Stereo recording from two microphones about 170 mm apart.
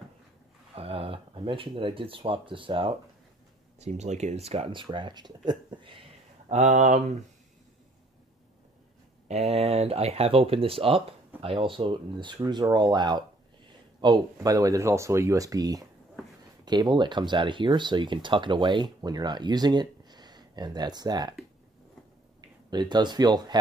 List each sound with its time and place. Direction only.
0.7 s speech: 35° right (ahead or behind)
3.8 s speech: 40° right (ahead or behind)
4.8 s speech: 25° right (ahead or behind)
6.5 s speech: 45° right (ahead or behind)
9.3 s speech: 40° right (ahead or behind)
22.7 s speech: 25° right (ahead or behind)